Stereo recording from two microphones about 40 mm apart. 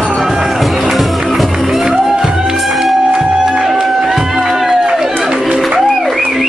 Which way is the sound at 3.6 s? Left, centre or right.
Centre.